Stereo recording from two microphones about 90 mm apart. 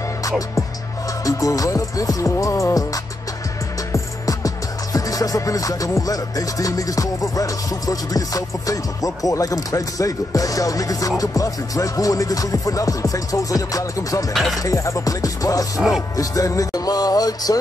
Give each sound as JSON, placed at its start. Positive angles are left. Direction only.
{"t": 1.2, "sound": "music", "side_deg": 40}
{"t": 14.3, "sound": "a sound", "side_deg": 0}
{"t": 14.6, "sound": "music", "side_deg": 35}